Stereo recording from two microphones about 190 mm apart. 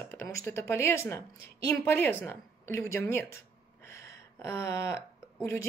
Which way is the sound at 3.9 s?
15° left (ahead or behind).